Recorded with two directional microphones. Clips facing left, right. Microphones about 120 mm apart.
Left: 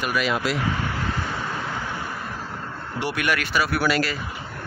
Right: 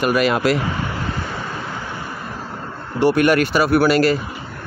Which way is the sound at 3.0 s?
40° right (ahead or behind).